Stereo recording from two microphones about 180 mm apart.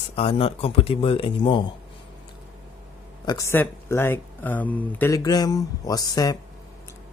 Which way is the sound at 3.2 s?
15° left (ahead or behind).